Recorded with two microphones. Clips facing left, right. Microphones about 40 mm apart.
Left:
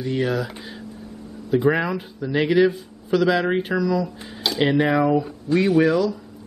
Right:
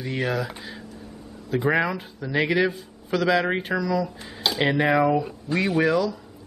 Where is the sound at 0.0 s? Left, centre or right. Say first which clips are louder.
Left 3 dB; centre.